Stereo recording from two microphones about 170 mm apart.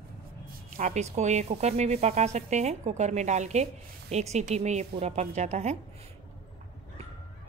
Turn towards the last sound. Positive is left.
turn(degrees=-40)  # may be behind; listen again after turning